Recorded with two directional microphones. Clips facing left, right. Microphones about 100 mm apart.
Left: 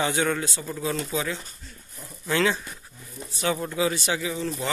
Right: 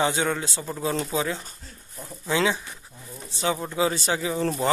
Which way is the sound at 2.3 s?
15° right (ahead or behind).